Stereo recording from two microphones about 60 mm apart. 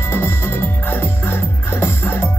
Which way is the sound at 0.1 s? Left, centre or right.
Left.